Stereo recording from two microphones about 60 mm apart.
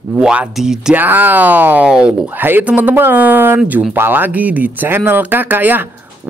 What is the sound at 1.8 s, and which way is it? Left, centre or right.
Speech, centre.